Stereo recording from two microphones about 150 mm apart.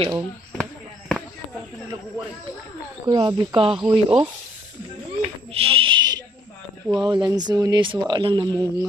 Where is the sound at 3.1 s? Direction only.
25° right (ahead or behind).